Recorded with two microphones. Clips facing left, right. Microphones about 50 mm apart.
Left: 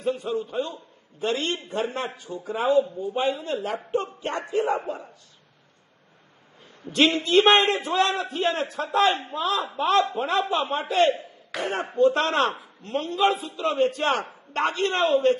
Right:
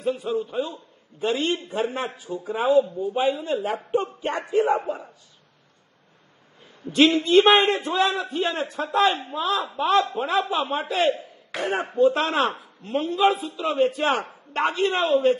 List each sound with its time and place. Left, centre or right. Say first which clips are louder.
0.1 s a man's voice: right 2 dB; centre
3.7 s a sound: right 2 dB; right
6.9 s a man's voice: right 3 dB; centre
11.5 s speech: right 2 dB; right
11.9 s a man's voice: even; centre